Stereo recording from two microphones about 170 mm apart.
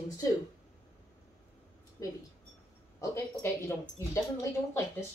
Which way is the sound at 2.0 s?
20° left (ahead or behind).